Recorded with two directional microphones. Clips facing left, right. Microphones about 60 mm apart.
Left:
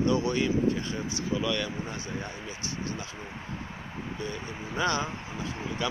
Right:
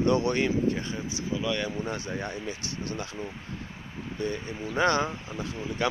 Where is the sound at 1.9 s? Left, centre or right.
Right.